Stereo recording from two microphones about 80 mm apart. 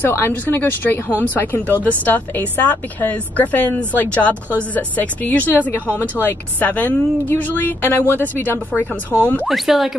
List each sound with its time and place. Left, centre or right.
0.0 s a woman's voice: left
9.5 s speech: centre